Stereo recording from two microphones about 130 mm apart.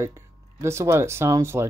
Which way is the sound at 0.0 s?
20° right (ahead or behind).